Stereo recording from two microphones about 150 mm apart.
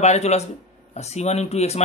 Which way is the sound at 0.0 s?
45° left (ahead or behind).